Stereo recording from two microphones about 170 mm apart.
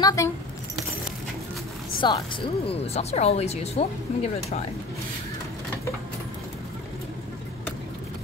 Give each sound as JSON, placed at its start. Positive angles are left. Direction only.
{"t": 0.0, "sound": "speech", "side_deg": 20}
{"t": 2.0, "sound": "speech", "side_deg": 25}